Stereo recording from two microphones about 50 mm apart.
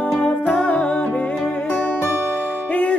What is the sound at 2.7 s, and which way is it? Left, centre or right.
Music, left.